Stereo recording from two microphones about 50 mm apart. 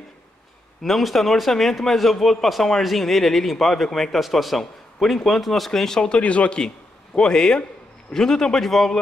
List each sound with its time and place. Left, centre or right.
0.8 s a man's voice: centre